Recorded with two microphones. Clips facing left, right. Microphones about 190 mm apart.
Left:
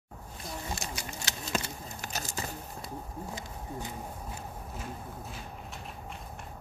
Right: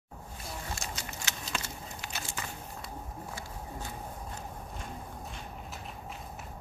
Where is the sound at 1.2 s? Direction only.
40° left (ahead or behind).